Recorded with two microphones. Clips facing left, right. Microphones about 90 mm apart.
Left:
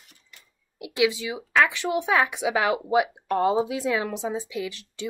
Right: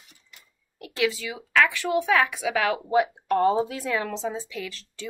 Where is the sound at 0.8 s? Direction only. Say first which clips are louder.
Left 3 dB; 15° left (ahead or behind).